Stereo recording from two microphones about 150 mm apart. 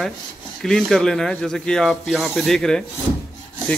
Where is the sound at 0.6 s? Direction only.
Centre (ahead or behind).